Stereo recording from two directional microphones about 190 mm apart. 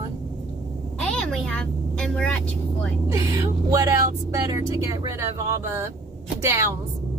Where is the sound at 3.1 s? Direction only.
15° right (ahead or behind).